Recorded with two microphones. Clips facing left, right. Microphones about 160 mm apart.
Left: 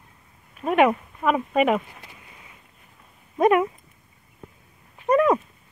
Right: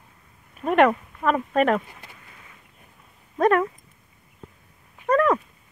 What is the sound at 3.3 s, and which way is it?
Speech, 10° left (ahead or behind).